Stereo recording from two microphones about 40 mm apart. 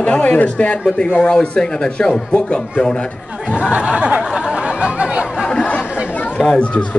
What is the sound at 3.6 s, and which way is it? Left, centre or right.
Speech, right.